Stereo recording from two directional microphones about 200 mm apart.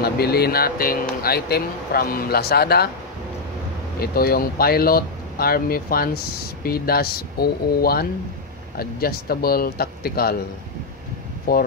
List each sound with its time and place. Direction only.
0.0 s speech: 50° left (ahead or behind)
4.0 s speech: 50° left (ahead or behind)
11.5 s speech: 50° left (ahead or behind)